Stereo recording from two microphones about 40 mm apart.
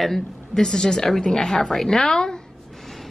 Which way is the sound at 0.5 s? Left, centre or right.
Centre.